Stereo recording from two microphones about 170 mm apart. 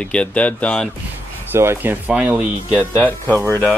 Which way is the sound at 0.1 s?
5° left (ahead or behind).